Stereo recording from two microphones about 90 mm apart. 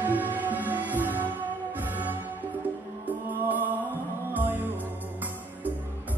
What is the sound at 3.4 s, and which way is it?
Music, 20° right (ahead or behind).